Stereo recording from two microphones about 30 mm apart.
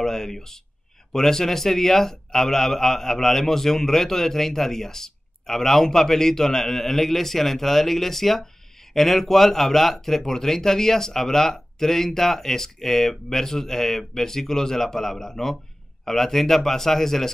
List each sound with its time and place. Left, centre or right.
0.0 s a man's voice: centre